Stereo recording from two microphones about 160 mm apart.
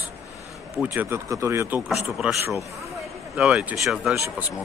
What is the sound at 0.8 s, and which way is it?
Speech, 15° right (ahead or behind).